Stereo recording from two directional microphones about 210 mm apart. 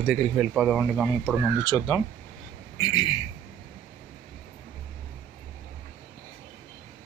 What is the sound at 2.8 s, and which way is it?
Speech, 20° left (ahead or behind).